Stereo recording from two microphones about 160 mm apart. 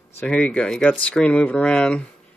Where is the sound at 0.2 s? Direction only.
10° left (ahead or behind).